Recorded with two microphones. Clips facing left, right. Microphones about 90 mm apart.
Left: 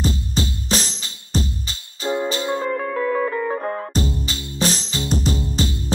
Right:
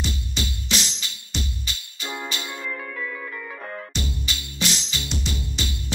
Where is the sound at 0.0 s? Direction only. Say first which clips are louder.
Left 7 dB; 35° left (ahead or behind).